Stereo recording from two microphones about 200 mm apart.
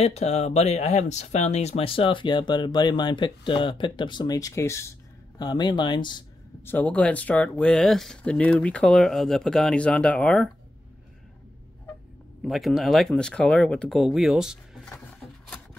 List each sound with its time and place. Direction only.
0.0 s speech: 30° left (ahead or behind)
6.6 s speech: 10° left (ahead or behind)
12.4 s speech: centre (ahead or behind)